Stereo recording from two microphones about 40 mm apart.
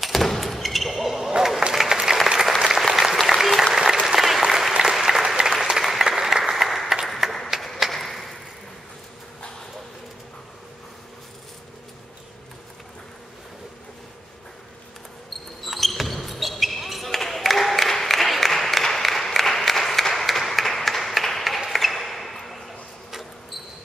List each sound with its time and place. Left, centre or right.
0.0 s thump: centre
1.7 s applause: centre
7.9 s whip: centre
15.2 s basketball bounce: centre
20.1 s a sound: centre